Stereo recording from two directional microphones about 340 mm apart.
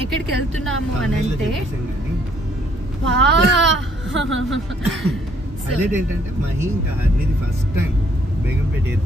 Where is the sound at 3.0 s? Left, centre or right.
Right.